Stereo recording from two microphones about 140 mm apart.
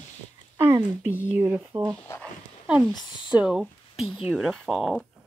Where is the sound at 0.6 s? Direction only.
15° right (ahead or behind).